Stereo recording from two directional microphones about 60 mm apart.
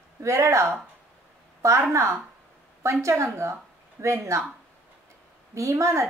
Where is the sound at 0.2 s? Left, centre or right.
Right.